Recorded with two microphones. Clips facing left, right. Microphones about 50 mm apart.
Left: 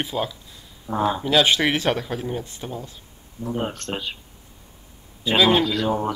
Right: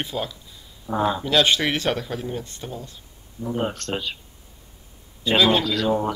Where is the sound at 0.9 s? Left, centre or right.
Centre.